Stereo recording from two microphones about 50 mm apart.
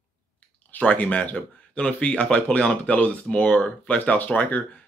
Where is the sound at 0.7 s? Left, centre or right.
Left.